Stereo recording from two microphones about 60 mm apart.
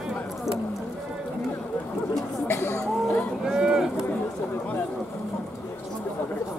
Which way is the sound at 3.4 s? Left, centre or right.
Centre.